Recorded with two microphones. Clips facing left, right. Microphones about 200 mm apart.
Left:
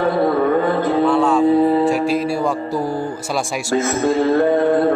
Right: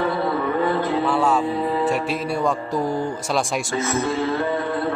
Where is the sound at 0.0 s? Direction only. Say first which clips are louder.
Left 6 dB; 50° left (ahead or behind).